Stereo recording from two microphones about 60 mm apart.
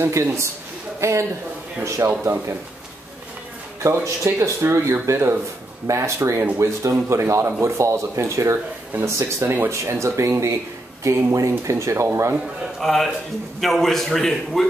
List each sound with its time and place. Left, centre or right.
0.0 s speech: right
3.8 s speech: right
5.9 s speech: right
12.8 s a man's voice: centre